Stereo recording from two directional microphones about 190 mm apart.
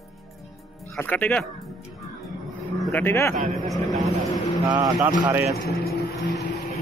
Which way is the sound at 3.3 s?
45° right (ahead or behind).